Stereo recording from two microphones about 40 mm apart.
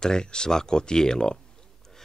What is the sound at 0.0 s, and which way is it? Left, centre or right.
Speech, centre.